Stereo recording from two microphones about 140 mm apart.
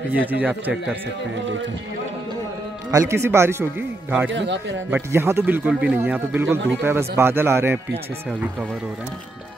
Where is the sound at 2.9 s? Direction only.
20° right (ahead or behind).